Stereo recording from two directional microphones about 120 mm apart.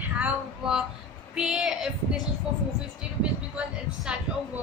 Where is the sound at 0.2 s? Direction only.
5° right (ahead or behind).